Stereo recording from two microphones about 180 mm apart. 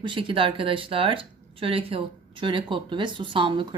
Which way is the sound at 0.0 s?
30° right (ahead or behind).